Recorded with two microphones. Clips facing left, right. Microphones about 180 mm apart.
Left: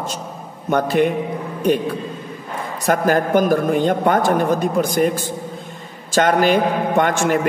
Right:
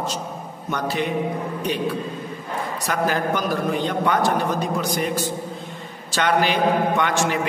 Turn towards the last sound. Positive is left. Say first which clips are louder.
# left 4 dB
turn(degrees=50)  # may be behind; listen again after turning